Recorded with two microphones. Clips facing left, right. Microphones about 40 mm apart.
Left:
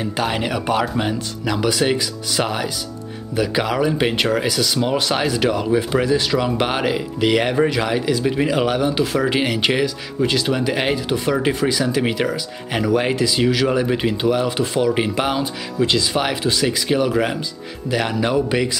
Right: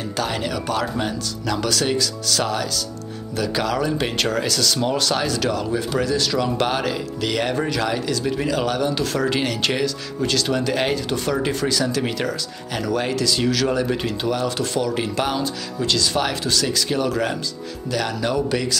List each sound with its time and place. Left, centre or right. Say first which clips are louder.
0.0 s speech: left 3 dB; left